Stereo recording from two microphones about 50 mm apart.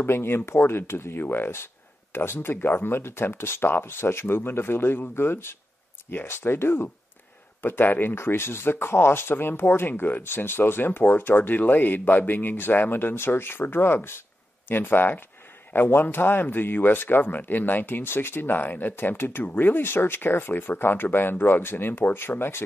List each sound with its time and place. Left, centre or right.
0.0 s speech: left
1.2 s speech: left
19.4 s speech: left